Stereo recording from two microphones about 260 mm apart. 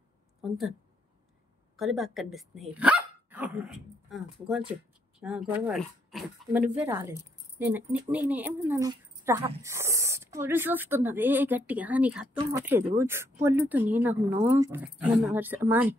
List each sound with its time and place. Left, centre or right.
0.4 s a woman's voice: centre
1.8 s speech: centre